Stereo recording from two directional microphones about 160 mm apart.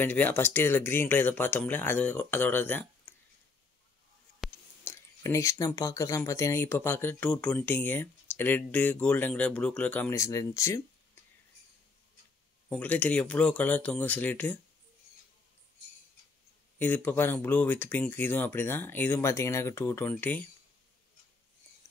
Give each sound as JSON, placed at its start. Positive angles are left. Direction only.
{"t": 0.0, "sound": "speech", "side_deg": 10}
{"t": 4.8, "sound": "speech", "side_deg": 20}
{"t": 12.6, "sound": "speech", "side_deg": 10}
{"t": 16.7, "sound": "speech", "side_deg": 10}